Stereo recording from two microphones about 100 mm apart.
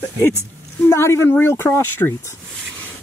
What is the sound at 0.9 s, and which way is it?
Speech, 25° left (ahead or behind).